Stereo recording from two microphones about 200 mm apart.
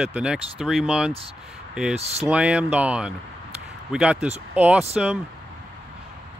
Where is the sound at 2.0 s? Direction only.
30° right (ahead or behind).